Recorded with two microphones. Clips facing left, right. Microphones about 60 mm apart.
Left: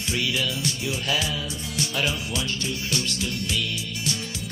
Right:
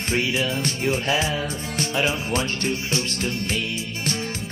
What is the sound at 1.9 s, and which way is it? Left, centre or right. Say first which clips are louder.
Speech: right 4 dB; right.